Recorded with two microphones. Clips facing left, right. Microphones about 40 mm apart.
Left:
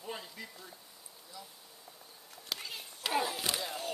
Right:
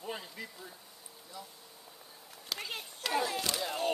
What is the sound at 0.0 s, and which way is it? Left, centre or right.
Speech, centre.